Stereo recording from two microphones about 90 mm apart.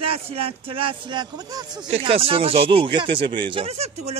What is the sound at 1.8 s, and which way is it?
Speech, 90° right.